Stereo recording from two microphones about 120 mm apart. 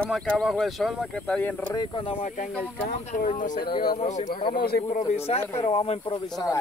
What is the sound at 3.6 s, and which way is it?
Speech, 45° left (ahead or behind).